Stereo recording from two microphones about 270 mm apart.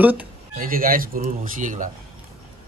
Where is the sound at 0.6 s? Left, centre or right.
Right.